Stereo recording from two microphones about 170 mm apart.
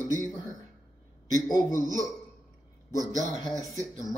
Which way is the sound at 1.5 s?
20° left (ahead or behind).